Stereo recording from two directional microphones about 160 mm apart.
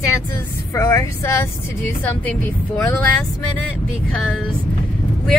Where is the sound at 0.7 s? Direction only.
20° left (ahead or behind).